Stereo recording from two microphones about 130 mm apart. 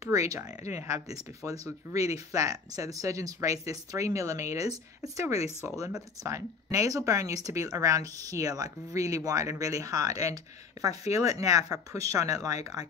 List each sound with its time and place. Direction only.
0.0 s speech: 25° right (ahead or behind)